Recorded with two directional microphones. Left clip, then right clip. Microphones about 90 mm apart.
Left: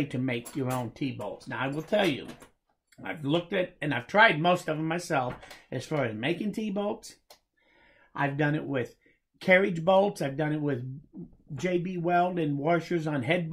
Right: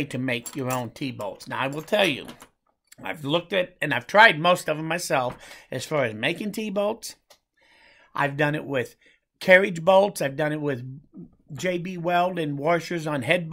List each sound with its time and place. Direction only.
0.0 s speech: 25° right (ahead or behind)
3.0 s speech: 25° right (ahead or behind)